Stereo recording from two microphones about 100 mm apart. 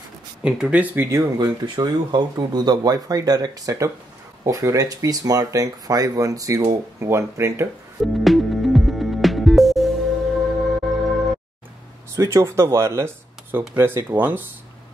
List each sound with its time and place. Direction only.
0.4 s speech: 10° right (ahead or behind)
0.9 s speech: 30° right (ahead or behind)
1.4 s speech: 45° right (ahead or behind); by 7.6 s 30° right (ahead or behind)
8.0 s music: centre (ahead or behind)
12.2 s speech: 30° right (ahead or behind)